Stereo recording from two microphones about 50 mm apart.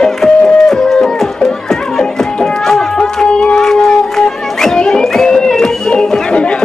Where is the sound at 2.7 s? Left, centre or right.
Centre.